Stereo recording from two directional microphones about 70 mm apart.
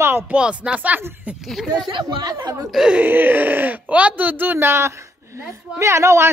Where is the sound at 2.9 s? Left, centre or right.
Right.